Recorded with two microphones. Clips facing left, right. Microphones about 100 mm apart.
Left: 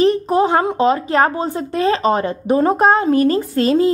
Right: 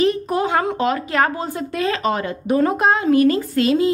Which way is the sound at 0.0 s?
30° left (ahead or behind).